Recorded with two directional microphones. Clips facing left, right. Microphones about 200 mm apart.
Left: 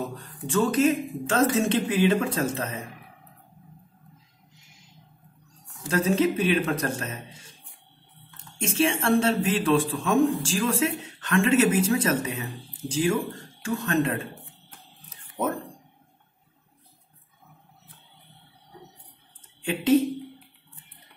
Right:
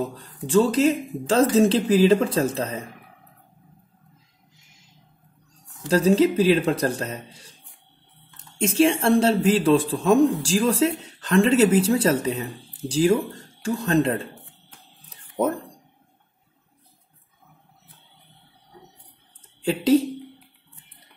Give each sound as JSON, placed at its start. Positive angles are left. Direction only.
{"t": 0.1, "sound": "a man's voice", "side_deg": -30}
{"t": 5.9, "sound": "a man's voice", "side_deg": -35}
{"t": 8.5, "sound": "a man's voice", "side_deg": -35}
{"t": 19.6, "sound": "a man's voice", "side_deg": -35}